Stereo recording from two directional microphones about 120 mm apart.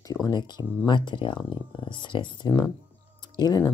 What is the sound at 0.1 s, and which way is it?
Speech, 35° left (ahead or behind).